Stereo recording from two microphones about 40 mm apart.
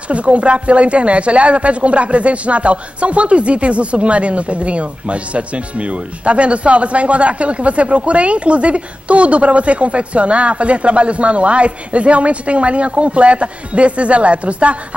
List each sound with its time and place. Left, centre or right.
0.1 s speech: right